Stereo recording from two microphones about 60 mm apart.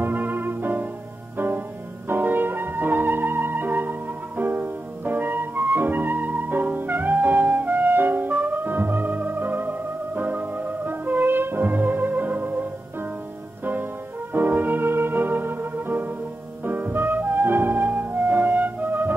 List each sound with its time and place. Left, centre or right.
0.0 s music: right
2.0 s music: right
14.3 s music: right